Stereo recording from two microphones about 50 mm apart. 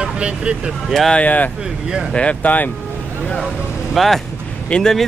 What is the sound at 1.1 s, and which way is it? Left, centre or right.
Speech, left.